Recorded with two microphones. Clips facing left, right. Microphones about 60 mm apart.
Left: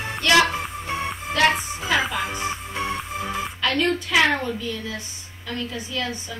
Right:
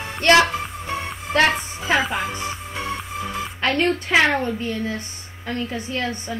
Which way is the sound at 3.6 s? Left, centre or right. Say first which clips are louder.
Right 2 dB; right.